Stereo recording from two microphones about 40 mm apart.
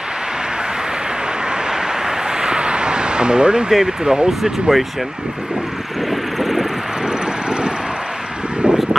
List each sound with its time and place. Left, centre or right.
1.7 s a sound: centre
4.0 s speech: right
4.3 s speech: centre
6.0 s vehicle: centre
7.1 s vehicle: right